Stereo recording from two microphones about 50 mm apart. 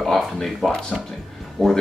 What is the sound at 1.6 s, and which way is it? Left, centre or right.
Speech, centre.